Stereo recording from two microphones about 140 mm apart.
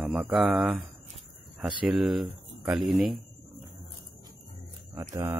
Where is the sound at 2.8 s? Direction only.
Centre (ahead or behind).